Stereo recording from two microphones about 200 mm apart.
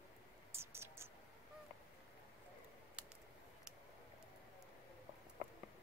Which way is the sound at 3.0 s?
5° right (ahead or behind).